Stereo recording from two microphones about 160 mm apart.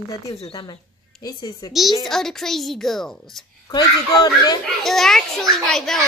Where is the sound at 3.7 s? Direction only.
25° left (ahead or behind).